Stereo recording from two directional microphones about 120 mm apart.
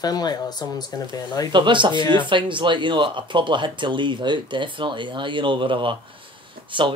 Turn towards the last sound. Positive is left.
turn(degrees=-45)  # may be behind; listen again after turning